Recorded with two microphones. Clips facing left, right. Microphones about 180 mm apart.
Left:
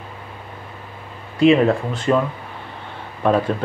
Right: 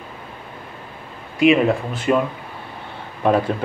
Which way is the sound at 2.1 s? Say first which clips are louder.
Even; 15° right (ahead or behind).